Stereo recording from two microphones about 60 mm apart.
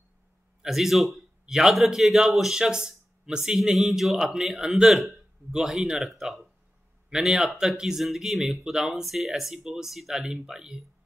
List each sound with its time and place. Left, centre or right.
0.6 s speech: centre